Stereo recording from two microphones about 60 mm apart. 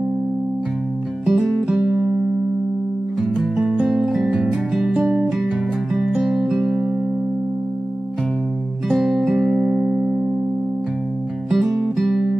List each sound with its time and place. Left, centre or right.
1.2 s music: centre
3.2 s music: centre
6.0 s music: centre
8.8 s music: centre
11.5 s music: centre